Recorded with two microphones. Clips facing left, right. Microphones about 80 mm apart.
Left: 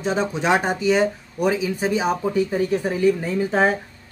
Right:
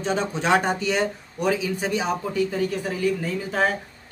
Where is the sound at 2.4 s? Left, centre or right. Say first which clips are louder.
Left 3 dB; left.